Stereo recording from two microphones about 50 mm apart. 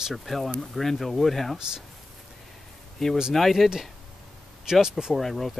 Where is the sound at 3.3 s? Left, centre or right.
Centre.